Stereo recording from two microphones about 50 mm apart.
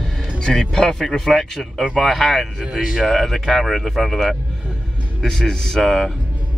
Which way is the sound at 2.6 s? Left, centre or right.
Centre.